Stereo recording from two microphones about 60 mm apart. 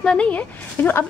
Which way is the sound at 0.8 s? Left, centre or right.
Left.